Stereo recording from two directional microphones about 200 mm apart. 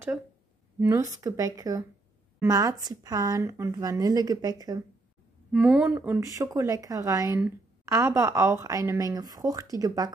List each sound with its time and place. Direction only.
0.7 s speech: 15° right (ahead or behind)
5.5 s speech: centre (ahead or behind); by 10.1 s 20° right (ahead or behind)